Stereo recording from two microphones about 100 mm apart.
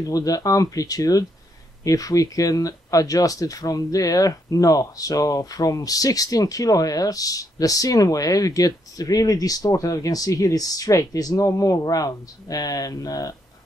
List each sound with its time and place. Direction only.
0.0 s speech: 35° left (ahead or behind)